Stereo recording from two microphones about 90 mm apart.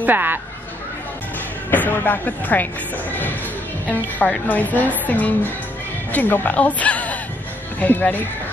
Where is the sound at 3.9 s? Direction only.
15° left (ahead or behind).